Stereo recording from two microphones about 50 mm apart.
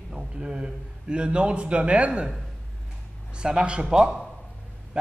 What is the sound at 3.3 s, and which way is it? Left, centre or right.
Speech, centre.